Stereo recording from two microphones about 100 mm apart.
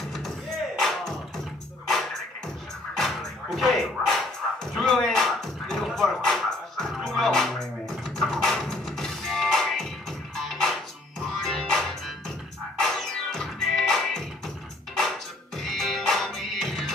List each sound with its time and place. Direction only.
0.7 s music: centre (ahead or behind)
3.0 s music: centre (ahead or behind)
12.8 s music: 5° left (ahead or behind)